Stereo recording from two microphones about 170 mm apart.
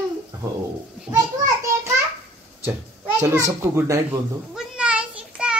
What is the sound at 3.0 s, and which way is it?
A child's voice, 15° right (ahead or behind).